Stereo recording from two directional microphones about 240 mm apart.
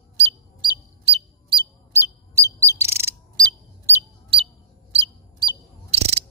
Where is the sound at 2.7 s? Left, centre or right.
Centre.